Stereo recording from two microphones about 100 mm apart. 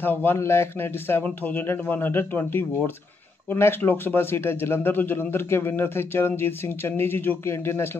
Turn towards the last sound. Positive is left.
turn(degrees=25)  # may be behind; listen again after turning